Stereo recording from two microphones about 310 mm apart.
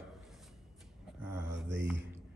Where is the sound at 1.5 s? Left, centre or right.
Right.